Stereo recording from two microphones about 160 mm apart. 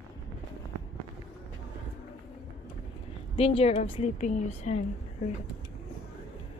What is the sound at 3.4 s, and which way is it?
A woman's voice, 40° left (ahead or behind).